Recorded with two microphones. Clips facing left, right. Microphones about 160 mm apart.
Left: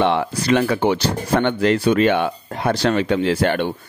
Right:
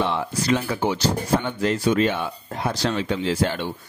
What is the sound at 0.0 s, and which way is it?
Speech, 65° left (ahead or behind).